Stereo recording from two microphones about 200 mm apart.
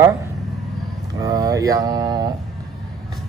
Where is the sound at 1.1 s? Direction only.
20° right (ahead or behind).